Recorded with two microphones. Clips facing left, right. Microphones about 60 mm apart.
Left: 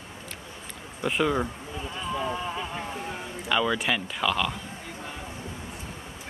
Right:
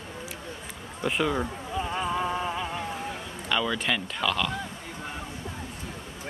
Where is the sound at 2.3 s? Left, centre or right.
Centre.